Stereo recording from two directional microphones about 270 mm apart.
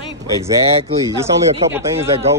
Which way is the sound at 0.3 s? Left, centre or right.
Centre.